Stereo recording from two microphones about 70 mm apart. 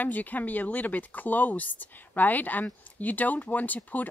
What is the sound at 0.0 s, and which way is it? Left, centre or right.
Speech, left.